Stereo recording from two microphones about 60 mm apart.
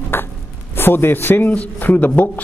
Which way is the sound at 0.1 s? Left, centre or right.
Left.